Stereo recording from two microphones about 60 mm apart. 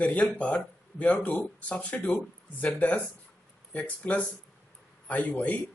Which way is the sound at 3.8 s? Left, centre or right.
Left.